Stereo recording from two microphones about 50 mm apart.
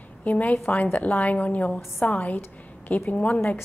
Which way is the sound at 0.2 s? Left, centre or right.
Left.